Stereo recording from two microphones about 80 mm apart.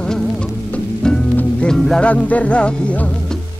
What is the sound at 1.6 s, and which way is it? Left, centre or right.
Music, centre.